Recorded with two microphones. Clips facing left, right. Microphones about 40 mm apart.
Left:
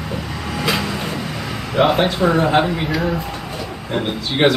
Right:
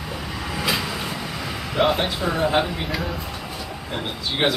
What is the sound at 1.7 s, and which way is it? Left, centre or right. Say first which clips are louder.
Speech: left 5 dB; centre.